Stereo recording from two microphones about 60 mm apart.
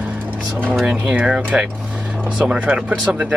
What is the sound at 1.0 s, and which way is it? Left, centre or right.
Speech, centre.